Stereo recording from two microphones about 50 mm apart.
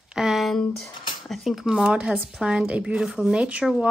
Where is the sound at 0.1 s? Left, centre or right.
Centre.